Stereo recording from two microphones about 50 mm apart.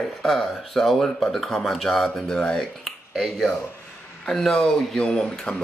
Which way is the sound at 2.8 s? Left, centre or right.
Centre.